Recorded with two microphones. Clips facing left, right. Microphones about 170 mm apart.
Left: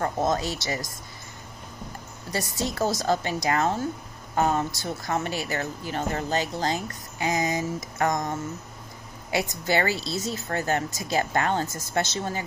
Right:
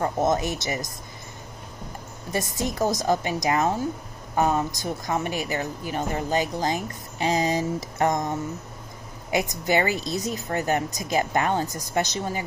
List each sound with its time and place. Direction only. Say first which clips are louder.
0.0 s mantra: right 2 dB; 20° right (ahead or behind)
2.3 s a woman's voice: right 2 dB; 20° right (ahead or behind)
7.2 s mantra: right 3 dB; 30° right (ahead or behind)
9.3 s a woman's voice: right 2 dB; 20° right (ahead or behind)